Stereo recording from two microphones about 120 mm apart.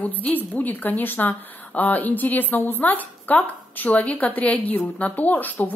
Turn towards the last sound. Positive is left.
turn(degrees=15)  # may be behind; listen again after turning